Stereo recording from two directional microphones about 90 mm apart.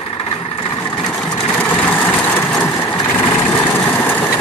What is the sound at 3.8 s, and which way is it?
Vehicle, 20° left (ahead or behind).